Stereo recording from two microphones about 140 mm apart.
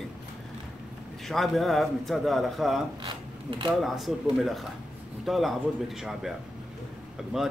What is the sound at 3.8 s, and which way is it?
Speech, centre (ahead or behind).